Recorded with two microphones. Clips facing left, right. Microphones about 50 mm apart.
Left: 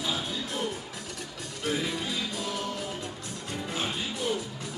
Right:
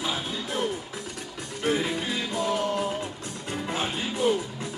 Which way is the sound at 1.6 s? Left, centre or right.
Right.